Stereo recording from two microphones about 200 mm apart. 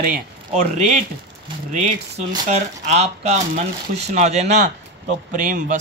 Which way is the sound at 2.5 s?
35° right (ahead or behind).